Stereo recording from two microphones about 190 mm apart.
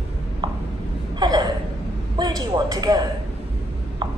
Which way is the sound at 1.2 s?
20° right (ahead or behind).